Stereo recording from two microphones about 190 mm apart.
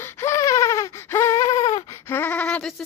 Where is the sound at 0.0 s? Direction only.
15° left (ahead or behind).